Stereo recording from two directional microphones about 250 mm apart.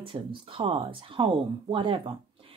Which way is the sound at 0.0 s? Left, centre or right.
Right.